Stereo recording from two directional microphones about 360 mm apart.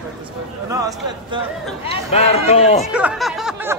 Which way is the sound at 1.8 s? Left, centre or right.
Centre.